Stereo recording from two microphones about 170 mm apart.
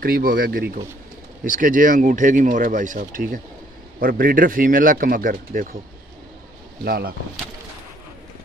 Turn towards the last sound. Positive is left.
turn(degrees=-65)  # may be behind; listen again after turning